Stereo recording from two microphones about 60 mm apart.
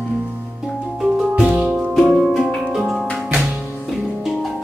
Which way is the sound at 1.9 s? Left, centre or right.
Centre.